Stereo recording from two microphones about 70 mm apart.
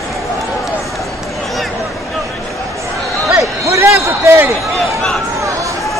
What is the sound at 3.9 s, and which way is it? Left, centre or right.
Basketball bounce, right.